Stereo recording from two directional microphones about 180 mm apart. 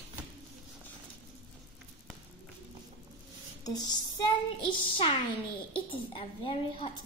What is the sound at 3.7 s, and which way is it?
Female singing, 20° left (ahead or behind).